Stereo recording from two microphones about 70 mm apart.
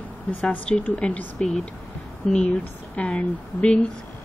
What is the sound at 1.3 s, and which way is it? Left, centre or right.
Speech, centre.